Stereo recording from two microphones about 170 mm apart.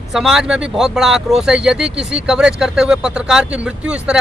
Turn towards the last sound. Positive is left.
turn(degrees=-5)  # may be behind; listen again after turning